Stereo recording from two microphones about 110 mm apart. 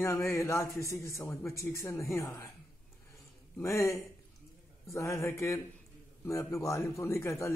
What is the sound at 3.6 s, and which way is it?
Speech, 25° left (ahead or behind).